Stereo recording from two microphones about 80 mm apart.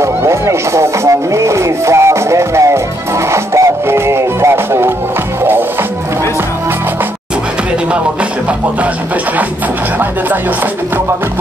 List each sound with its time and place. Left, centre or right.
0.0 s music: right